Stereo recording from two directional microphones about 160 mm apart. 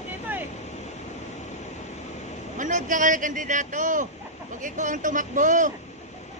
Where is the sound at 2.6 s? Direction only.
50° right (ahead or behind).